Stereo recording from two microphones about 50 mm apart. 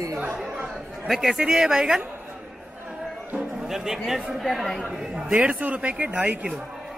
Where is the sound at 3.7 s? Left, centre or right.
Centre.